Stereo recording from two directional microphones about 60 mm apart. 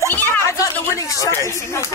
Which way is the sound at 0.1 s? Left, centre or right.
Left.